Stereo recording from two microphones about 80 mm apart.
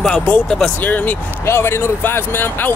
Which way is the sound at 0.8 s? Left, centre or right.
Left.